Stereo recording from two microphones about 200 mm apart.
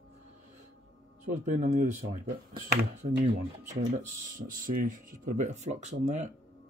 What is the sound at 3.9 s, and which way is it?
Speech, 40° right (ahead or behind).